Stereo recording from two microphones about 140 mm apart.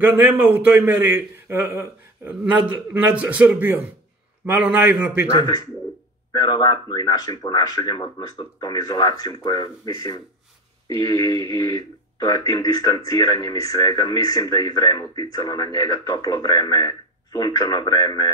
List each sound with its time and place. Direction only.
0.0 s a man's voice: 10° right (ahead or behind)
6.3 s speech: 30° left (ahead or behind)